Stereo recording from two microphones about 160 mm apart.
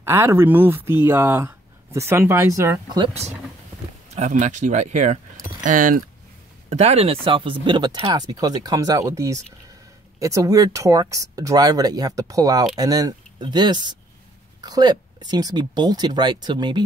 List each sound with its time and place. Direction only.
0.0 s speech: 15° right (ahead or behind)
4.1 s speech: 45° right (ahead or behind)
6.7 s speech: 40° right (ahead or behind)